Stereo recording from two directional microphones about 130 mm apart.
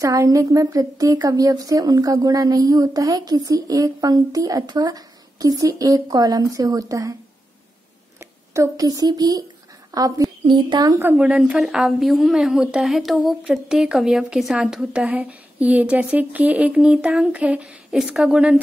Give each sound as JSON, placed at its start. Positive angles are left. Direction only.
{"t": 0.0, "sound": "speech", "side_deg": -25}
{"t": 8.2, "sound": "speech", "side_deg": -25}
{"t": 9.8, "sound": "a sound", "side_deg": -25}
{"t": 10.4, "sound": "a child's voice", "side_deg": -35}
{"t": 11.0, "sound": "a woman's voice", "side_deg": -10}